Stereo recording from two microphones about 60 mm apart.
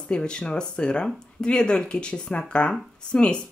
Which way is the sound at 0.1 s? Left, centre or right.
Centre.